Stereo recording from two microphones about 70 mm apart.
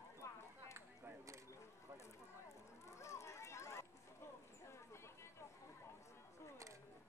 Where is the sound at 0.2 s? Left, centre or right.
Left.